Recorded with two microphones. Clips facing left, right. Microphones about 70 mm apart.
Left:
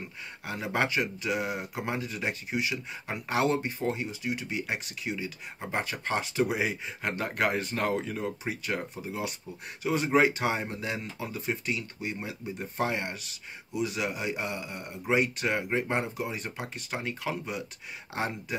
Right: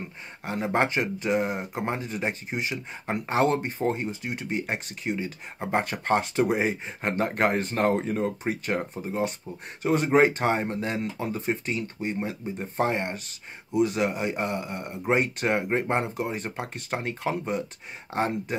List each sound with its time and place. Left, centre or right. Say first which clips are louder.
0.5 s speech: right 4 dB; right